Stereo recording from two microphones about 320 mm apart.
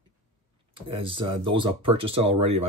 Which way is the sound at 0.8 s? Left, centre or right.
Centre.